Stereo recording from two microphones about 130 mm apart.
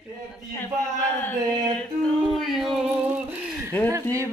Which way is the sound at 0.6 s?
15° left (ahead or behind).